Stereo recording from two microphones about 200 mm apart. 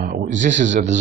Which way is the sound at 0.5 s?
65° right (ahead or behind).